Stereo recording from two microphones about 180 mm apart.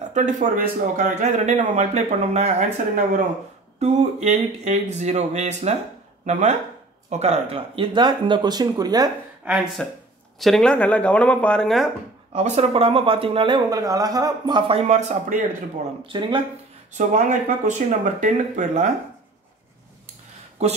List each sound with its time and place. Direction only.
0.1 s speech: 45° right (ahead or behind)
3.8 s speech: 40° right (ahead or behind); by 9.1 s 20° right (ahead or behind)
9.4 s speech: 5° right (ahead or behind)
12.3 s speech: 35° right (ahead or behind)
16.1 s speech: 30° right (ahead or behind)
16.9 s speech: 40° right (ahead or behind)
20.6 s speech: 35° right (ahead or behind)